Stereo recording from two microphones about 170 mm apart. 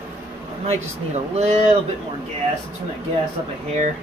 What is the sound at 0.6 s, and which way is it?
Speech, 40° right (ahead or behind).